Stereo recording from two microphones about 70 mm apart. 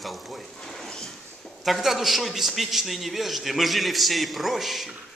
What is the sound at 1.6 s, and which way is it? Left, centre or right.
A man's voice, centre.